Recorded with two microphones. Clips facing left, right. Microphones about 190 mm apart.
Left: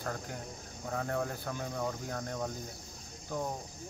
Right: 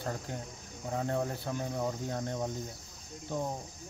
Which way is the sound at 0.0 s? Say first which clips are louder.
Right 1 dB; 25° right (ahead or behind).